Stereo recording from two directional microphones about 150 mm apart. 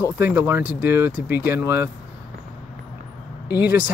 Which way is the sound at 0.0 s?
15° right (ahead or behind).